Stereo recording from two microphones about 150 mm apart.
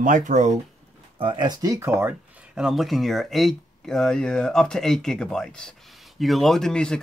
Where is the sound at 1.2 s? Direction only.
30° right (ahead or behind).